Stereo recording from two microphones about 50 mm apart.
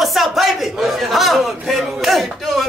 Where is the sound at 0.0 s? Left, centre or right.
Centre.